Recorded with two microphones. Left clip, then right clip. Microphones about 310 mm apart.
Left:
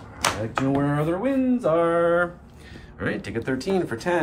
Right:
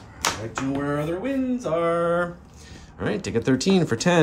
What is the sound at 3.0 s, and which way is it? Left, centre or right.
Speech, centre.